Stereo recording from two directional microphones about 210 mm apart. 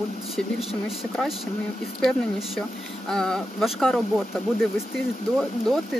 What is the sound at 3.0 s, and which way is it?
Speech, 5° left (ahead or behind).